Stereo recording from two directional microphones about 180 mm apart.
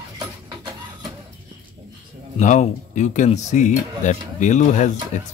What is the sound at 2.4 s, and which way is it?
Speech, 40° left (ahead or behind).